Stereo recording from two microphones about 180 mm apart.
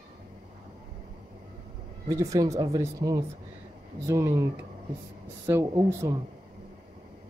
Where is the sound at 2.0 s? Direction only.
20° right (ahead or behind).